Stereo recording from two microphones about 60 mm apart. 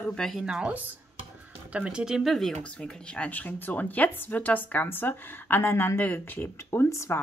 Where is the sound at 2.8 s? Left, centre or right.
Left.